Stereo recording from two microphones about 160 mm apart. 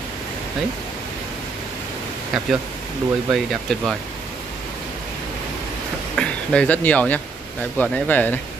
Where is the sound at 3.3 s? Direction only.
Centre (ahead or behind).